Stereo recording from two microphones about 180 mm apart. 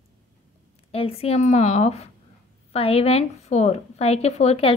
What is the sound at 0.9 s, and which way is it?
A woman's voice, 35° left (ahead or behind).